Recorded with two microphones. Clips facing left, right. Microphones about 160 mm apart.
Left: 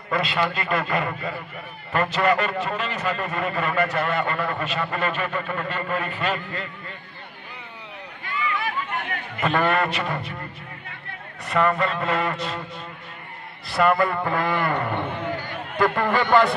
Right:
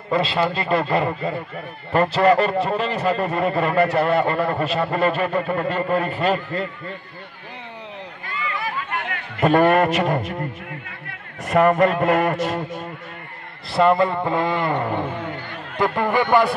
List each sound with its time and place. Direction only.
0.1 s a man's voice: 30° right (ahead or behind)
8.9 s a man's voice: 45° right (ahead or behind)
11.4 s a man's voice: 45° right (ahead or behind)
13.7 s a man's voice: 25° right (ahead or behind)